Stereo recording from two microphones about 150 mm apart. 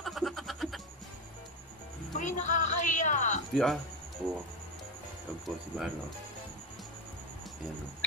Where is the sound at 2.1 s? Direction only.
55° left (ahead or behind).